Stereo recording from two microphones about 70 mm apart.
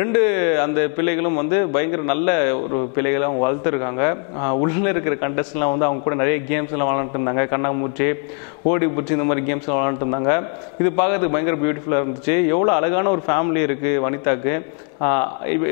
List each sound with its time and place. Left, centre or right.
0.0 s a man's voice: left